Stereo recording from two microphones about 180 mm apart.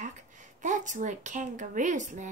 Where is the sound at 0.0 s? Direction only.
45° right (ahead or behind).